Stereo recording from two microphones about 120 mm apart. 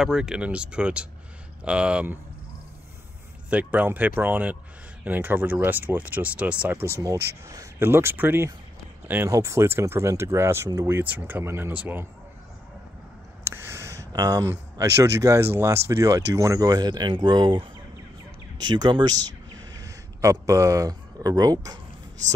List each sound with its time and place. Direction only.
0.0 s speech: 5° right (ahead or behind)
3.4 s speech: 10° right (ahead or behind)
13.4 s speech: 20° right (ahead or behind); by 19.1 s 40° right (ahead or behind)
19.7 s speech: 25° right (ahead or behind)